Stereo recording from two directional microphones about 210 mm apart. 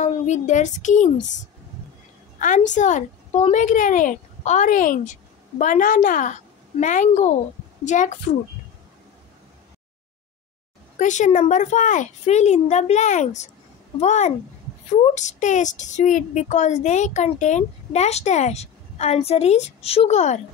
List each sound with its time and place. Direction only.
0.0 s speech: 35° left (ahead or behind)
11.0 s speech: 35° left (ahead or behind)